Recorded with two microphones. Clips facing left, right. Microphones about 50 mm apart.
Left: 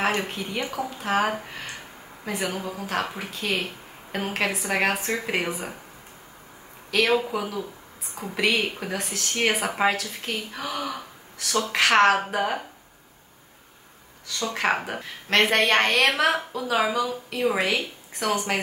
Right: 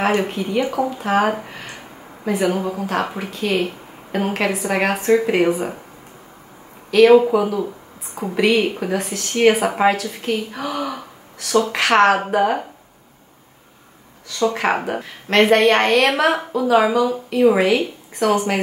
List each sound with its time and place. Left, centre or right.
0.2 s a woman's voice: centre
2.5 s a woman's voice: centre
3.2 s a woman's voice: centre
6.9 s a woman's voice: centre
14.5 s a woman's voice: centre